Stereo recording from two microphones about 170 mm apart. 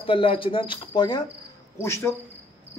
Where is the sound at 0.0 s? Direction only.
30° left (ahead or behind).